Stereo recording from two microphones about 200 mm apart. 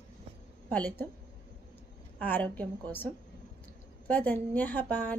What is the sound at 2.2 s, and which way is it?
Music, 10° left (ahead or behind).